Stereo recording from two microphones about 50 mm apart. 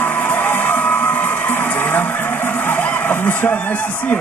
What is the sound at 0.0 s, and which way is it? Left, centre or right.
Music, left.